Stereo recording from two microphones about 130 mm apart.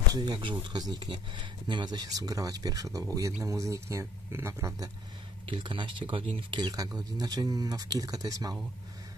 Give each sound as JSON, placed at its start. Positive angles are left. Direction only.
{"t": 0.1, "sound": "speech", "side_deg": -35}
{"t": 5.5, "sound": "speech", "side_deg": -40}